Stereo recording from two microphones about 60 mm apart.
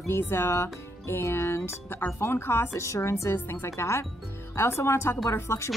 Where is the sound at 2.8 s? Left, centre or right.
Left.